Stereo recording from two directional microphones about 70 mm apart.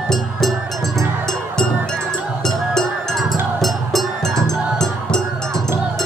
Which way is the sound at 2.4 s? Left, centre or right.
Centre.